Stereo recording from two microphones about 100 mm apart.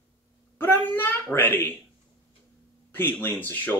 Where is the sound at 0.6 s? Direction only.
20° left (ahead or behind).